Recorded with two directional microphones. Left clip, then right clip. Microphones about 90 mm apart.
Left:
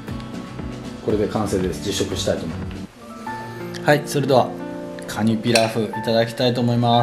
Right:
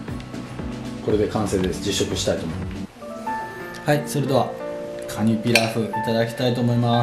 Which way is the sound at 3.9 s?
20° left (ahead or behind).